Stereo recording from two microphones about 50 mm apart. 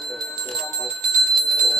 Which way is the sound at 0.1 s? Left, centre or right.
Centre.